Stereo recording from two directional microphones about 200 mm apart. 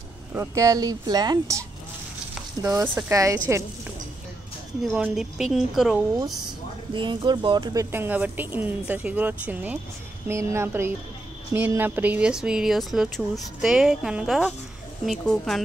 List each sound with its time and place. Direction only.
0.3 s speech: 15° right (ahead or behind)
4.9 s speech: 5° right (ahead or behind)
6.9 s speech: 25° right (ahead or behind); by 15.6 s centre (ahead or behind)